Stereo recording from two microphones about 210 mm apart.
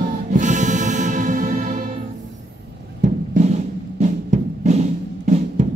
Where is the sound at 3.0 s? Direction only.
35° right (ahead or behind).